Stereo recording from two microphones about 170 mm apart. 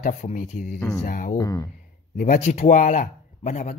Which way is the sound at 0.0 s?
45° left (ahead or behind).